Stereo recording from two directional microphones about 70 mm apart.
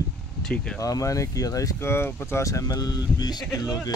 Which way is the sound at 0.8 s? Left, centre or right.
Left.